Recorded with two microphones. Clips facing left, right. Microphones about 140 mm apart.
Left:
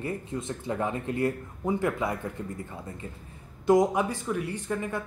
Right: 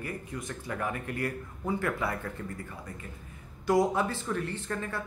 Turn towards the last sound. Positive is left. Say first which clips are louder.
# left 4 dB
turn(degrees=15)  # may be behind; listen again after turning